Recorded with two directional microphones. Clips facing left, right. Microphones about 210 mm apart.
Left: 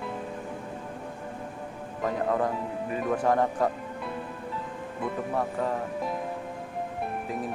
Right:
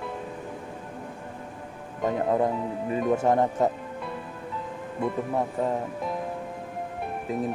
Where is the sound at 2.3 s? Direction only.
25° right (ahead or behind).